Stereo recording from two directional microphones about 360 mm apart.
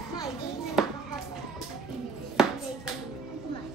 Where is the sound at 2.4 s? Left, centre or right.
Centre.